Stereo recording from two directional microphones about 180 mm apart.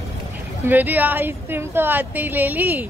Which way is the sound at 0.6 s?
10° right (ahead or behind).